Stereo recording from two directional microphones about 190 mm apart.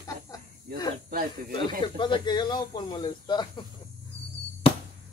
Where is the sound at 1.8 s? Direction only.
25° left (ahead or behind).